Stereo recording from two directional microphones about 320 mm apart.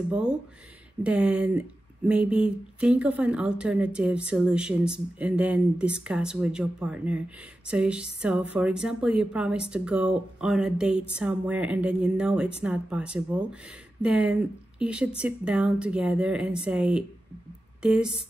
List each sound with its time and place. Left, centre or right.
0.1 s speech: centre